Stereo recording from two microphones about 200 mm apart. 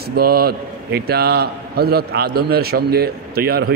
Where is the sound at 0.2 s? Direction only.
50° right (ahead or behind).